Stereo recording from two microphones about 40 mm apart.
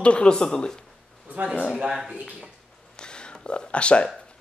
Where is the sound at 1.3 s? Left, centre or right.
Right.